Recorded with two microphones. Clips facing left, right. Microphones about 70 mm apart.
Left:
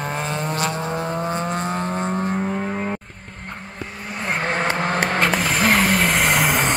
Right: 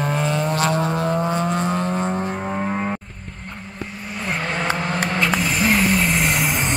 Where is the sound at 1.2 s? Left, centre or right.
Left.